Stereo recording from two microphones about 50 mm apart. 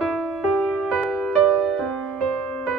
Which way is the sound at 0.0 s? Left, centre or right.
Centre.